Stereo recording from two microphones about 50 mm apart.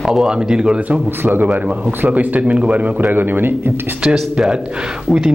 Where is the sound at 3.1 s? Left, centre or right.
Right.